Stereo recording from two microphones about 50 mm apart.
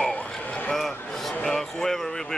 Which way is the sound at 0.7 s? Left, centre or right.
Centre.